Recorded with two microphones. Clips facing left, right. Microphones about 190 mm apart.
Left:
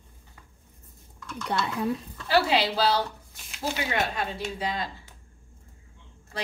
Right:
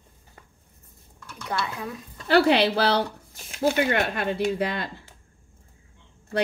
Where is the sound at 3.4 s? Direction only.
50° right (ahead or behind).